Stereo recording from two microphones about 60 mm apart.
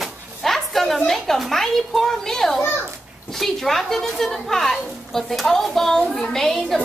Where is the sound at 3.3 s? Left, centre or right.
Centre.